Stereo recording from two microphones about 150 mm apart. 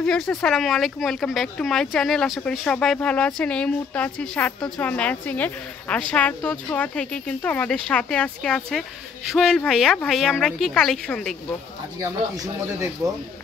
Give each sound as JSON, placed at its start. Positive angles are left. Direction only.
{"t": 0.0, "sound": "a woman's voice", "side_deg": 5}